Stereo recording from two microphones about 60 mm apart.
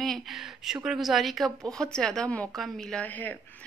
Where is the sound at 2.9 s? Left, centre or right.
Left.